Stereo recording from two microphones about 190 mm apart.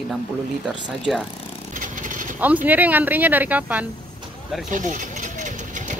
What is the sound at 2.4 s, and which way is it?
Speech, 10° right (ahead or behind).